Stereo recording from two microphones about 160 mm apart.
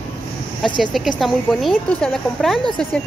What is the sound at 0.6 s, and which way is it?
Speech, 30° left (ahead or behind).